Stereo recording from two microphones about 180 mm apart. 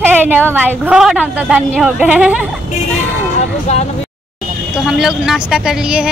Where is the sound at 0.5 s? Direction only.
10° right (ahead or behind).